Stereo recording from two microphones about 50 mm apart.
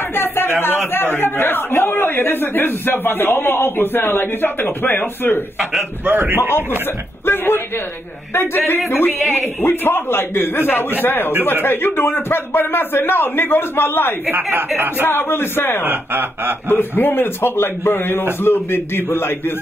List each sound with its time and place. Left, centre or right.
0.1 s speech: left
5.6 s a man's voice: centre
6.0 s speech: right
7.2 s a man's voice: left
15.8 s speech: right
16.6 s speech: left